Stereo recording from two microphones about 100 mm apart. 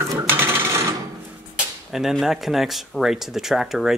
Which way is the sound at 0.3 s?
25° right (ahead or behind).